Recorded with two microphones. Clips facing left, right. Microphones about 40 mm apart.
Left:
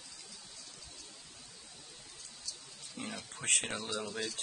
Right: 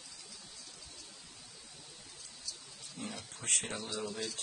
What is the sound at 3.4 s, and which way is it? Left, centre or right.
Speech, left.